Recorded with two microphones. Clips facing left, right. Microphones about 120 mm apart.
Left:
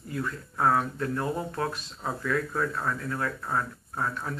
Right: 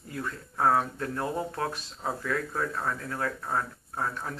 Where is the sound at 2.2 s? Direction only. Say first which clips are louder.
Left 4 dB; 30° right (ahead or behind).